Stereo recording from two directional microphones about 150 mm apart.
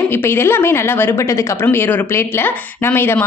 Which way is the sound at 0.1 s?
15° left (ahead or behind).